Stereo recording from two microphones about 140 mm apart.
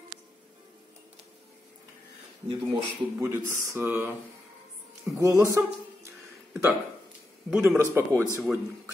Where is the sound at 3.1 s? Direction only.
20° right (ahead or behind).